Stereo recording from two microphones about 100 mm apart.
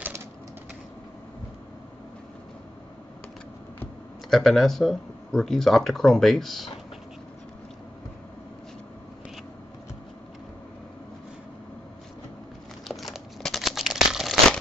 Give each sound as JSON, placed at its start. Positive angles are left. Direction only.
{"t": 4.3, "sound": "speech", "side_deg": 0}
{"t": 12.8, "sound": "crumpling", "side_deg": 0}